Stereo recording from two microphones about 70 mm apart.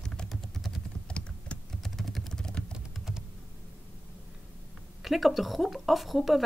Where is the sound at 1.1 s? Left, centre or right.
Centre.